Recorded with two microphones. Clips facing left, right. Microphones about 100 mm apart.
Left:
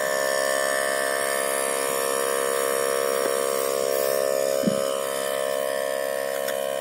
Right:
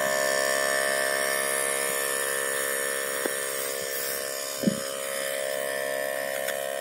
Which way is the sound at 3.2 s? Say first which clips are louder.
Left 8 dB; 90° left.